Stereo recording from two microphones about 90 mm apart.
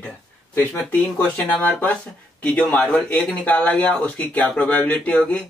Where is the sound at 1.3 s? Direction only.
20° left (ahead or behind).